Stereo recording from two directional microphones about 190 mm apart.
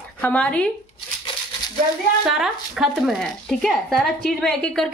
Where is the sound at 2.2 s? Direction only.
Centre (ahead or behind).